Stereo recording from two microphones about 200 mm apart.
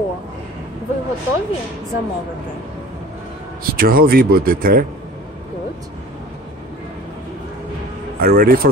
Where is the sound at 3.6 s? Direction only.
45° right (ahead or behind).